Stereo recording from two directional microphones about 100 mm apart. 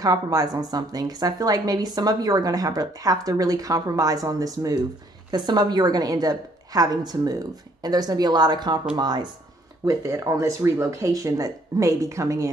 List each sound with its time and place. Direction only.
0.0 s a woman's voice: 40° right (ahead or behind)